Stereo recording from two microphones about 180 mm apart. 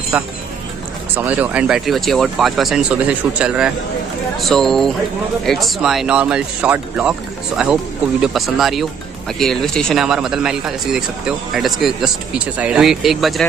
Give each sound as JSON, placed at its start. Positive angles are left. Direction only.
{"t": 0.1, "sound": "speech", "side_deg": -5}